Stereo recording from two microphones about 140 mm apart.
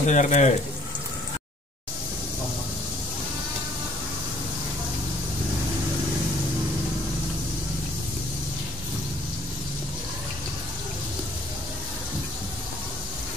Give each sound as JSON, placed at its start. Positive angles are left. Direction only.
{"t": 0.0, "sound": "speech", "side_deg": 60}